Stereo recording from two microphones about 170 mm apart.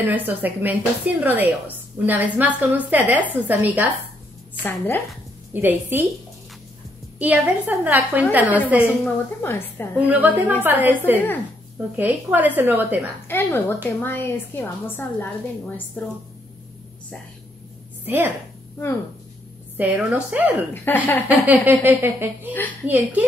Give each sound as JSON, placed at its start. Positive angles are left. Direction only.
{"t": 0.0, "sound": "a woman's voice", "side_deg": -10}
{"t": 4.6, "sound": "a woman's voice", "side_deg": 15}
{"t": 5.5, "sound": "a woman's voice", "side_deg": -10}
{"t": 7.2, "sound": "a woman's voice", "side_deg": -10}
{"t": 9.0, "sound": "a woman's voice", "side_deg": 15}
{"t": 9.9, "sound": "a woman's voice", "side_deg": -10}
{"t": 12.0, "sound": "a woman's voice", "side_deg": -10}
{"t": 13.3, "sound": "a woman's voice", "side_deg": 15}
{"t": 18.0, "sound": "a woman's voice", "side_deg": -10}
{"t": 19.8, "sound": "a woman's voice", "side_deg": -10}
{"t": 20.7, "sound": "a woman's voice", "side_deg": 10}
{"t": 21.3, "sound": "a woman's voice", "side_deg": -10}